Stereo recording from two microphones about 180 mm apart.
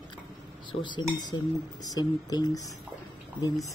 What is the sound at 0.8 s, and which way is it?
A man's voice, 25° left (ahead or behind).